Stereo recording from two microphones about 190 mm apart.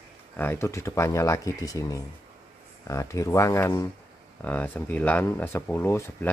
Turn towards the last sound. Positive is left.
turn(degrees=10)  # may be behind; listen again after turning